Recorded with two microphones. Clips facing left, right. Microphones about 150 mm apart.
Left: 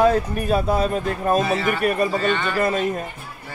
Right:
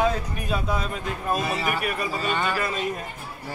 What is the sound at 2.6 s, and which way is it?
Speech, 50° left (ahead or behind).